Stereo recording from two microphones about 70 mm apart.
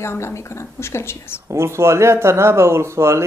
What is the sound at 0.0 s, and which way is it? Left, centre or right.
A woman's voice, left.